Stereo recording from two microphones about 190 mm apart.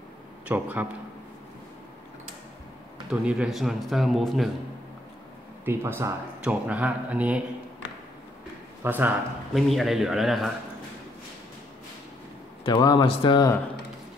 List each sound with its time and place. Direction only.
0.5 s speech: 10° right (ahead or behind)
3.1 s a man's voice: 5° right (ahead or behind)
5.7 s speech: 15° right (ahead or behind)
8.8 s a man's voice: 10° right (ahead or behind)
12.6 s speech: 25° left (ahead or behind)